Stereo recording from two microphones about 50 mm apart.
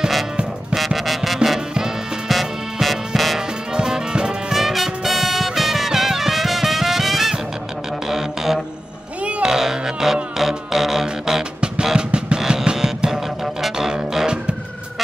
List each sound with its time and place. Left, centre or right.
0.7 s music: centre
3.3 s music: centre
4.6 s music: centre